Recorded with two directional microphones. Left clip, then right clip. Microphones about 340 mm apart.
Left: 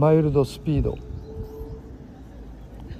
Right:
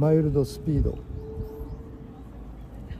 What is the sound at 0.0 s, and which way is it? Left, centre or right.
Speech, centre.